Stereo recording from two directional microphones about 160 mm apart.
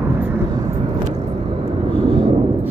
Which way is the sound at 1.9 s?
5° left (ahead or behind).